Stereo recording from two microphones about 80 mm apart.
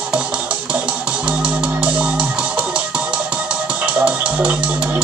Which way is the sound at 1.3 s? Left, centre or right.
Centre.